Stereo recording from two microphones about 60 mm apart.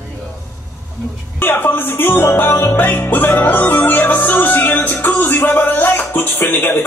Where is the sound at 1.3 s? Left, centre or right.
Left.